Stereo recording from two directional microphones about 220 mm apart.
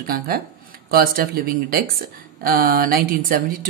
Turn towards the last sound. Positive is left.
turn(degrees=-40)  # may be behind; listen again after turning